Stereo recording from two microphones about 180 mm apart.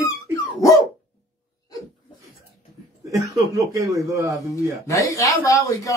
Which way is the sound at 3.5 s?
20° right (ahead or behind).